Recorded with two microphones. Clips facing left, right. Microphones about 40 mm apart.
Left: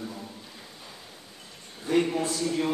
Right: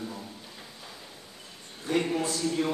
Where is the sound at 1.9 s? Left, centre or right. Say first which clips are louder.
Left 3 dB; centre.